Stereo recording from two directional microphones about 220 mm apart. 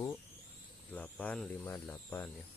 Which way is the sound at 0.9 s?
5° left (ahead or behind).